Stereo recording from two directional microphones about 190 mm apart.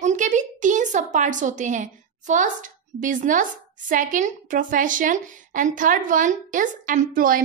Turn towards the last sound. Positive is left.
turn(degrees=-45)  # may be behind; listen again after turning